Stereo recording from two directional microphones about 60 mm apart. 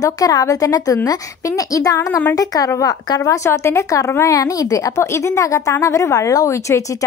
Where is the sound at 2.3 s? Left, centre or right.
Left.